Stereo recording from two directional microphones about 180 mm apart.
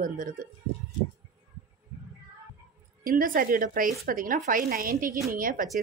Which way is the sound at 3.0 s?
50° right (ahead or behind).